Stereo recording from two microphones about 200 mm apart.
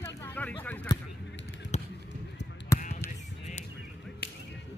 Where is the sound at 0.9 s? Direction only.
20° left (ahead or behind).